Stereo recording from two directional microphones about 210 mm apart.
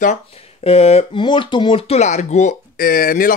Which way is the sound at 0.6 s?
30° left (ahead or behind).